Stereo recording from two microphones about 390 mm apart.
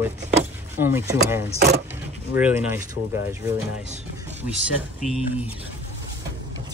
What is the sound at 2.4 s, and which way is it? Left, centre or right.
Speech, centre.